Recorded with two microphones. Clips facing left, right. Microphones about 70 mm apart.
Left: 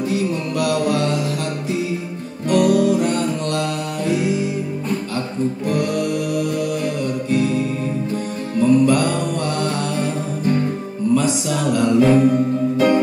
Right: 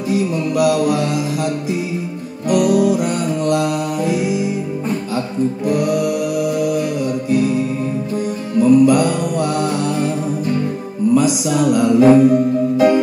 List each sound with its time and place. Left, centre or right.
0.1 s mantra: centre
2.5 s music: centre
5.7 s music: centre
7.2 s music: centre
8.5 s music: centre
11.1 s music: centre
11.9 s music: right
12.3 s music: centre